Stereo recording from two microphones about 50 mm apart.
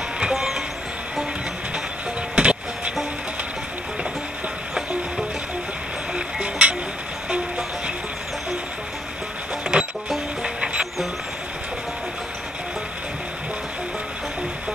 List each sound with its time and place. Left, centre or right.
0.3 s vehicle: centre
2.3 s music: right
6.1 s music: right
9.7 s music: centre